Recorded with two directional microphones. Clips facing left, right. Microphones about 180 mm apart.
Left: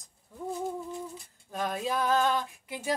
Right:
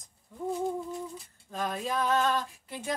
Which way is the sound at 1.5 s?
10° left (ahead or behind).